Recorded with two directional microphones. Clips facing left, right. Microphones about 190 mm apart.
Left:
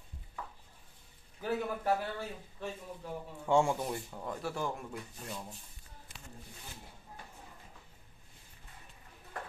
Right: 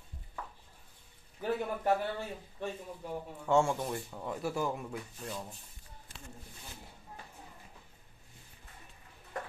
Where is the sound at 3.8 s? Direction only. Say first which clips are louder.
Right 1 dB; centre (ahead or behind).